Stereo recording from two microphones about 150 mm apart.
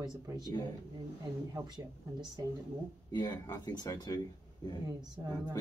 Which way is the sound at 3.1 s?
25° left (ahead or behind).